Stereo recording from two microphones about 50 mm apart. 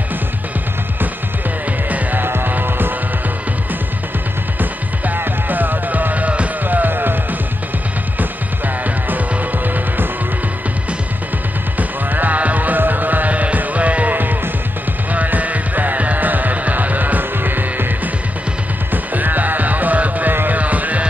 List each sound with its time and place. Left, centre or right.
1.9 s music: right
4.6 s music: right
12.1 s music: right
19.1 s music: right